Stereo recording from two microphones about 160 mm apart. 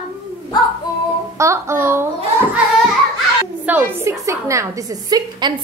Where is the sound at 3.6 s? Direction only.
15° right (ahead or behind).